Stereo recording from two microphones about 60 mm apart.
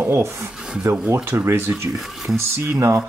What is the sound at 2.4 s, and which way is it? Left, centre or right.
Speech, right.